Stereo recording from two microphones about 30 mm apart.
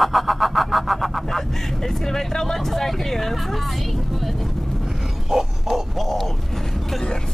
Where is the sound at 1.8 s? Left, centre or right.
Centre.